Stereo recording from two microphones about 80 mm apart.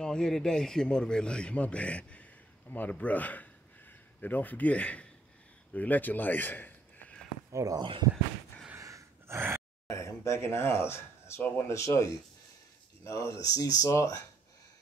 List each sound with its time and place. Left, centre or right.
0.0 s a man's voice: centre
7.5 s speech: right
8.7 s gasp: right
9.8 s speech: left